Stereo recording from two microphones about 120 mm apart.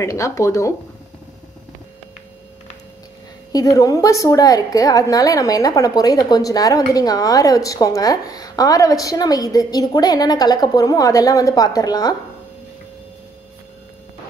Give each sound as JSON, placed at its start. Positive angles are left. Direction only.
{"t": 0.0, "sound": "a woman's voice", "side_deg": 25}
{"t": 3.5, "sound": "a woman's voice", "side_deg": 30}